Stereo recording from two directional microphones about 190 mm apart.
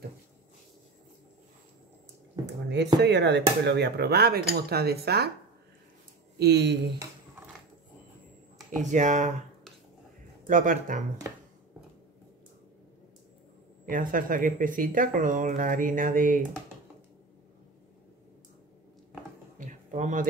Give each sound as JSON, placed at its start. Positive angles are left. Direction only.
{"t": 2.7, "sound": "speech", "side_deg": -65}
{"t": 6.3, "sound": "speech", "side_deg": -60}
{"t": 8.7, "sound": "speech", "side_deg": -40}
{"t": 10.4, "sound": "speech", "side_deg": -45}
{"t": 13.8, "sound": "speech", "side_deg": -45}
{"t": 19.6, "sound": "a sound", "side_deg": -40}